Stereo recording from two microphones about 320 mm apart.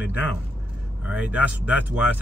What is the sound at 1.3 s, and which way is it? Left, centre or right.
Speech, centre.